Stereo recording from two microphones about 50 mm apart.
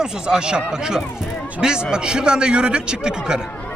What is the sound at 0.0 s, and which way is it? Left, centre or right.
A man's voice, centre.